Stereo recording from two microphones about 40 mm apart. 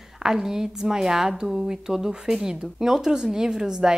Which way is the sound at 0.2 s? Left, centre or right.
Centre.